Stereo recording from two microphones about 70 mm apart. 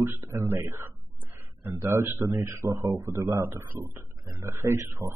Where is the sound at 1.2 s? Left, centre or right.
Right.